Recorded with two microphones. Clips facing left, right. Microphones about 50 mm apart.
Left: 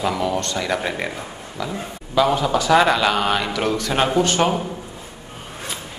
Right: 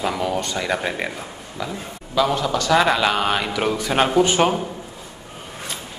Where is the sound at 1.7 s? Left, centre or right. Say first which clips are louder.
Left 2 dB; centre.